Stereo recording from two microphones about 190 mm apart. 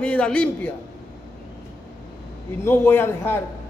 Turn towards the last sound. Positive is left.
turn(degrees=10)  # may be behind; listen again after turning